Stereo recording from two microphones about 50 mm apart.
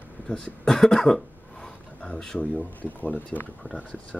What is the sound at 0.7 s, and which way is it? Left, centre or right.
Cough, centre.